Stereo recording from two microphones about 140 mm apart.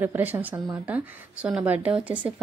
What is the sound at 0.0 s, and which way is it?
A woman's voice, 15° right (ahead or behind).